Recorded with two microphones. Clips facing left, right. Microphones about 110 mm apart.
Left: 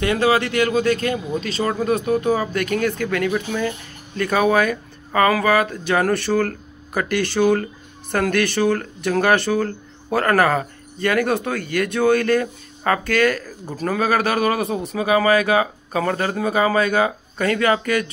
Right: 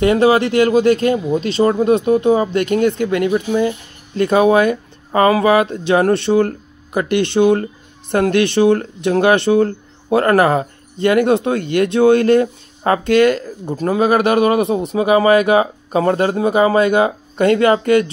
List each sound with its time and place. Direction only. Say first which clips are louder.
0.0 s speech: right 6 dB; 25° right (ahead or behind)